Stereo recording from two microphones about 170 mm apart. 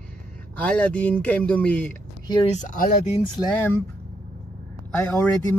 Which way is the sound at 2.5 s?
45° left (ahead or behind).